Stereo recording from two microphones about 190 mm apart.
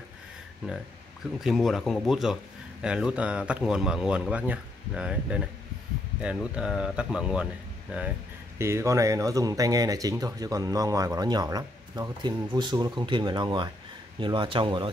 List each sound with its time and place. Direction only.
1.4 s speech: centre (ahead or behind); by 14.9 s 25° right (ahead or behind)